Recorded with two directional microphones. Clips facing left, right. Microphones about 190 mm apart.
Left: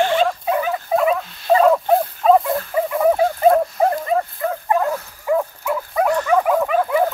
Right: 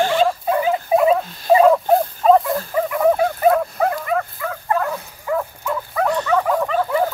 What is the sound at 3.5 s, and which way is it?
Dog, 30° left (ahead or behind).